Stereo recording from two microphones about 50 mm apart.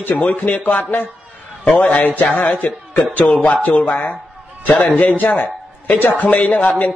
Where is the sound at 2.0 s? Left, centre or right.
Left.